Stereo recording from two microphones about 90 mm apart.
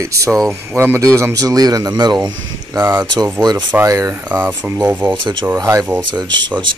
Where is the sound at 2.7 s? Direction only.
20° right (ahead or behind).